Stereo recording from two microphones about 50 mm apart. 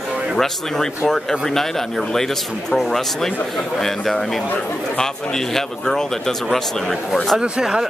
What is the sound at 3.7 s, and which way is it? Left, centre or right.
Speech, centre.